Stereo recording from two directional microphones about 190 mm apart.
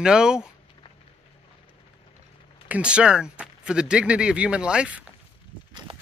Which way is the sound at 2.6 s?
5° right (ahead or behind).